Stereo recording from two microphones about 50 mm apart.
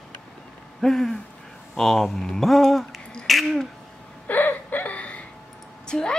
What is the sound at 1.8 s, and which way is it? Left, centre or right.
Speech, centre.